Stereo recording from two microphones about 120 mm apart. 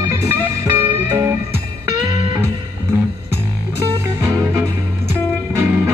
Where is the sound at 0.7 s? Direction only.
20° right (ahead or behind).